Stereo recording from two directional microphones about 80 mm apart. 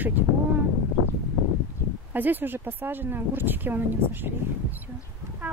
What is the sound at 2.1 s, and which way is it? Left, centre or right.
Speech, right.